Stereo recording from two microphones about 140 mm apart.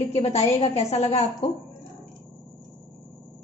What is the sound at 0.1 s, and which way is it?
A woman's voice, 50° left (ahead or behind).